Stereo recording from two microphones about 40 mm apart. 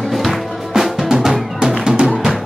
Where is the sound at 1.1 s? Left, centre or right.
Centre.